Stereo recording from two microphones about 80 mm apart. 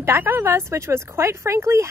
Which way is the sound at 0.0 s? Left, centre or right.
Right.